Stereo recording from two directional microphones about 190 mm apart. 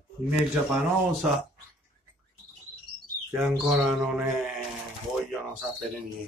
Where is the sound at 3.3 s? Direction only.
5° right (ahead or behind).